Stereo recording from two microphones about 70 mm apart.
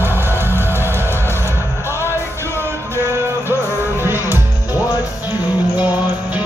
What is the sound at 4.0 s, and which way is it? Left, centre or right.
Music, right.